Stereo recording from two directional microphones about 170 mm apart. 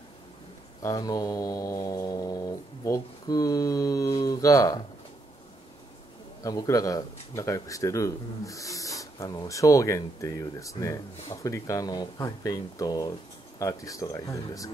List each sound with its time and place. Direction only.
0.8 s mantra: 20° left (ahead or behind)
6.4 s speech: 20° left (ahead or behind)